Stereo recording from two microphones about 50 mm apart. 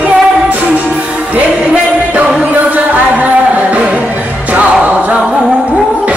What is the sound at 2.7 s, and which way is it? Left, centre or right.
Music, right.